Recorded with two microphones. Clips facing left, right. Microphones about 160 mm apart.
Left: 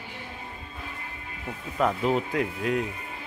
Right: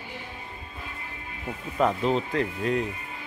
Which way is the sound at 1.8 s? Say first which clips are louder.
Right 1 dB; centre (ahead or behind).